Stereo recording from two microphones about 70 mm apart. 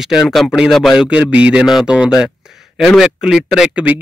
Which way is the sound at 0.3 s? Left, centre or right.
Centre.